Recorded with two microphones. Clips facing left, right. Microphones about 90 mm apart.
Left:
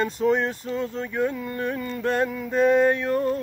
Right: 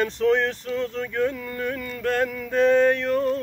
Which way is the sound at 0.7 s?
15° left (ahead or behind).